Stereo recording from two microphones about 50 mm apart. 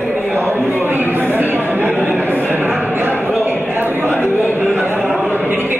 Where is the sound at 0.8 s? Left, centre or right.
Right.